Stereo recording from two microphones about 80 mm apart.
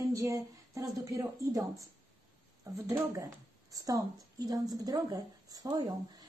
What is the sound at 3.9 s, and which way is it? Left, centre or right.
A woman's voice, right.